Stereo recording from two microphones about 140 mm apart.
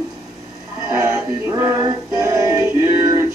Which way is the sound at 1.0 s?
20° right (ahead or behind).